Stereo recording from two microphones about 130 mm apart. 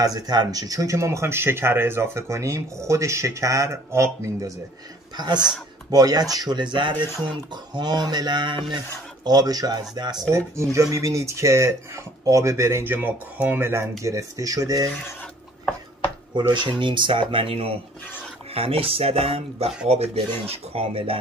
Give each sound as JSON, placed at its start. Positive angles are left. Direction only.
{"t": 0.0, "sound": "speech", "side_deg": -30}
{"t": 10.5, "sound": "speech", "side_deg": -20}
{"t": 16.3, "sound": "speech", "side_deg": -35}